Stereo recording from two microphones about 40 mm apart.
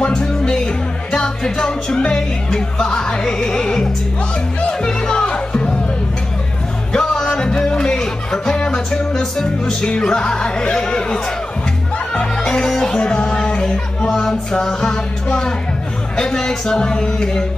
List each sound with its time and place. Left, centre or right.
0.0 s music: centre
6.9 s music: left
12.1 s speech: left
13.0 s music: left
16.2 s speech: centre